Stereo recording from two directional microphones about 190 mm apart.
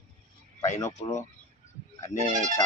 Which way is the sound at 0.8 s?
15° left (ahead or behind).